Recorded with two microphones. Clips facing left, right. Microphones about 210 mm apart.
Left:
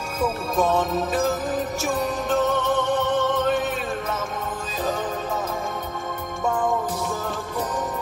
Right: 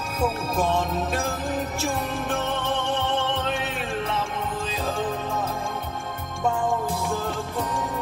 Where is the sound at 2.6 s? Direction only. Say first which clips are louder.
Left 4 dB; 45° left (ahead or behind).